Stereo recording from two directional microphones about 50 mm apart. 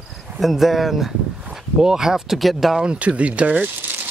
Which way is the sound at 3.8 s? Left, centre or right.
Right.